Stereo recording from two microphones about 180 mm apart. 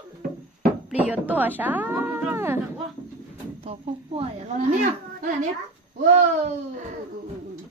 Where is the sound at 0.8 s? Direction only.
5° right (ahead or behind).